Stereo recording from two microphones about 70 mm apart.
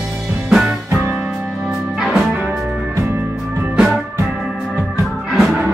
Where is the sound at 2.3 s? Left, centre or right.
Centre.